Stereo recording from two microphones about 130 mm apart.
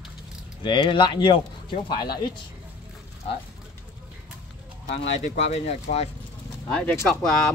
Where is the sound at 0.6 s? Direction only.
35° left (ahead or behind).